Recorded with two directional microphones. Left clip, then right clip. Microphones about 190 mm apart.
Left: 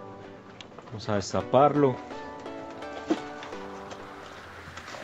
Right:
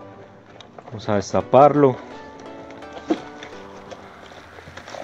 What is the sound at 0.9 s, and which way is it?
Speech, 35° right (ahead or behind).